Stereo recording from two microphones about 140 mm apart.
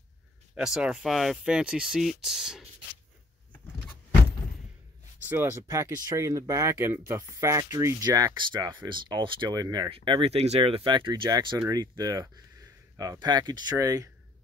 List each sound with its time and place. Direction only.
0.6 s speech: 5° right (ahead or behind)
5.3 s speech: 15° right (ahead or behind)